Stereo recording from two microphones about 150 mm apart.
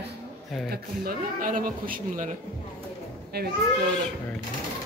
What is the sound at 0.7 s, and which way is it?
Speech, 70° right (ahead or behind).